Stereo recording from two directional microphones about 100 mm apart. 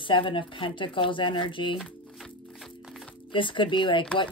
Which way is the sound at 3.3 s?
55° left (ahead or behind).